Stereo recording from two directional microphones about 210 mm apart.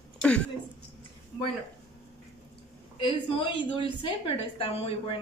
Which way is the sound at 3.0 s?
25° left (ahead or behind).